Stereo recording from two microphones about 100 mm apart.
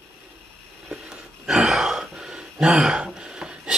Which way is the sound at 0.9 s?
10° right (ahead or behind).